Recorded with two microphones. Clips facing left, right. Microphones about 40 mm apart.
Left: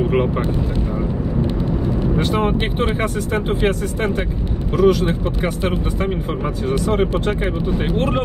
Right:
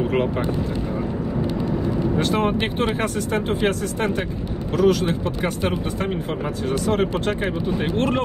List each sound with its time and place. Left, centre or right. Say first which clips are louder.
2.1 s speech: left 2 dB; centre